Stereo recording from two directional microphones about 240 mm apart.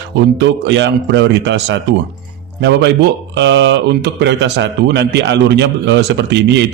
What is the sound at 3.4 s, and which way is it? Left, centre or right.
Speech, right.